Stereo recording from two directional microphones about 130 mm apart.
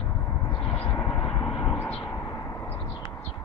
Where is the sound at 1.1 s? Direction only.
25° left (ahead or behind).